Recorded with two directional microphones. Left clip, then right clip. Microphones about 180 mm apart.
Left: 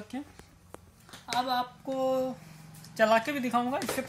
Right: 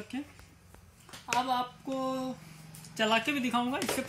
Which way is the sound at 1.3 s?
30° left (ahead or behind).